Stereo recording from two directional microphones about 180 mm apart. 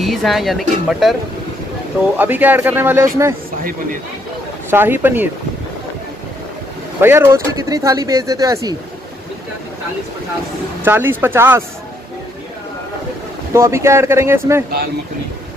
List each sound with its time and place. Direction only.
0.0 s speech: centre (ahead or behind)
2.1 s speech: 10° right (ahead or behind)
4.6 s speech: 10° right (ahead or behind)
7.0 s speech: 15° right (ahead or behind)
10.8 s speech: 10° right (ahead or behind)
13.5 s speech: 15° right (ahead or behind)